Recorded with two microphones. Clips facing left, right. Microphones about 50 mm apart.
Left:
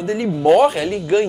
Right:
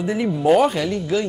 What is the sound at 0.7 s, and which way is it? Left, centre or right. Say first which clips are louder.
Speech: left 4 dB; centre.